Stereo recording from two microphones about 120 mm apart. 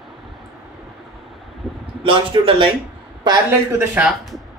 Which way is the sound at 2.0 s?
45° right (ahead or behind).